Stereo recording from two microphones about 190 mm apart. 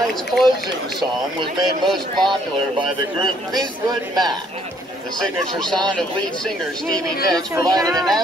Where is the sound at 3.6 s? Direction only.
20° right (ahead or behind).